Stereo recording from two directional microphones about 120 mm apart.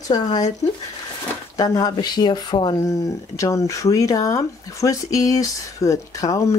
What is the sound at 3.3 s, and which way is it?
Speech, 25° left (ahead or behind).